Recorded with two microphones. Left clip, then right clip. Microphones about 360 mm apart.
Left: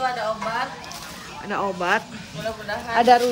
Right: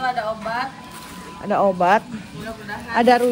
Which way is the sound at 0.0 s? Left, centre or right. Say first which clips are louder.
Right 1 dB; centre.